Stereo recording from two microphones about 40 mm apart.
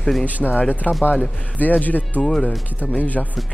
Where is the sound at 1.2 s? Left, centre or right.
Left.